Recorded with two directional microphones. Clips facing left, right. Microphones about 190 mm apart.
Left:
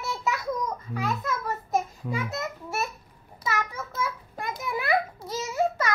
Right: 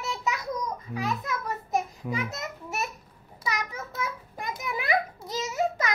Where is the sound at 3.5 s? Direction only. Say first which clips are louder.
Left 3 dB; 20° right (ahead or behind).